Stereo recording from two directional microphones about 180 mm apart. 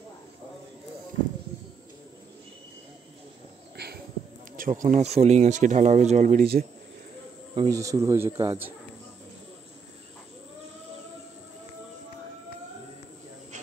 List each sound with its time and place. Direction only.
3.7 s a sound: 65° right (ahead or behind)
4.6 s speech: 45° right (ahead or behind)
7.5 s speech: 20° right (ahead or behind)